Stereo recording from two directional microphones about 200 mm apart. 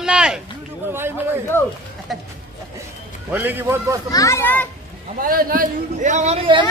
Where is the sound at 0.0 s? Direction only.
5° right (ahead or behind).